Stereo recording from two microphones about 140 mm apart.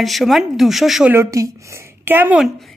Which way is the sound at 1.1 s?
20° right (ahead or behind).